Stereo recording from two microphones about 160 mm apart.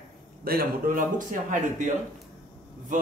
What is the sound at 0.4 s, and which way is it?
Speech, 70° right (ahead or behind).